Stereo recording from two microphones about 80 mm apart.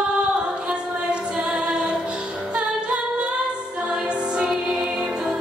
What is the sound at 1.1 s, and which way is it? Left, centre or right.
Music, centre.